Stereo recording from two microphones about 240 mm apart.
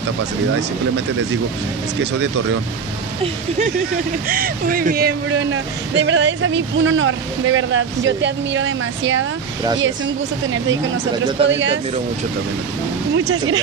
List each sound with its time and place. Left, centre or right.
4.3 s speech: right
11.4 s speech: right
13.1 s speech: right